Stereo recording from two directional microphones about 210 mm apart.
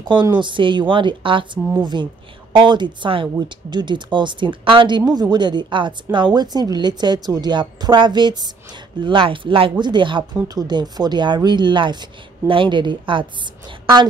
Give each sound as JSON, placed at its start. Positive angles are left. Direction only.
{"t": 0.0, "sound": "speech", "side_deg": -20}